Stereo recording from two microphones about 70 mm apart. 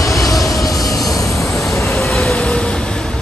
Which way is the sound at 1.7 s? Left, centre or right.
Left.